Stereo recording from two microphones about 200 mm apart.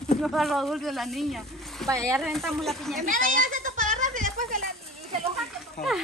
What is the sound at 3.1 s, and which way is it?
Children playing, 40° right (ahead or behind).